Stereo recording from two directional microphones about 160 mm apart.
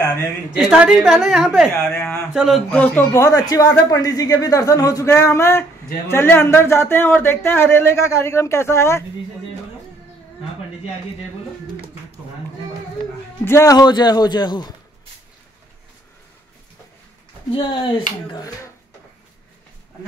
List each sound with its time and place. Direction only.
0.7 s a woman's voice: 5° right (ahead or behind); by 9.0 s 15° left (ahead or behind)
13.5 s speech: 20° left (ahead or behind)
17.5 s speech: 30° left (ahead or behind)